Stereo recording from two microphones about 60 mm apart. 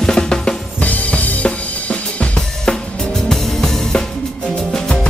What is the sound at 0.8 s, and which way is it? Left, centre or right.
Drum kit, left.